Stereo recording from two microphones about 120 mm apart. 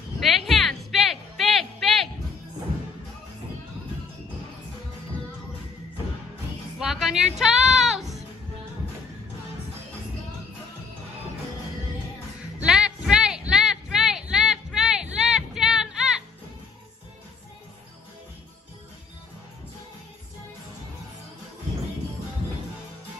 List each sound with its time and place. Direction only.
0.2 s music: centre (ahead or behind)
6.8 s music: 5° right (ahead or behind)
12.5 s a sound: 5° right (ahead or behind)